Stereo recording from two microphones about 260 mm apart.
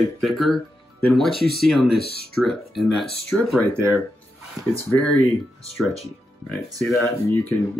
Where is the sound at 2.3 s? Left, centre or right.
Centre.